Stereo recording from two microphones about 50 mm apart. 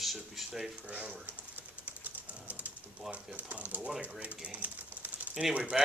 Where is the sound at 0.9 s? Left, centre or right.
Right.